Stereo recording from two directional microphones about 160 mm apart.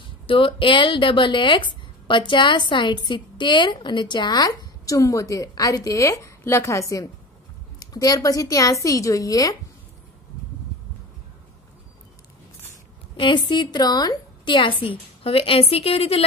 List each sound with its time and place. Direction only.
0.0 s speech: 35° left (ahead or behind)
13.1 s a woman's voice: 30° left (ahead or behind)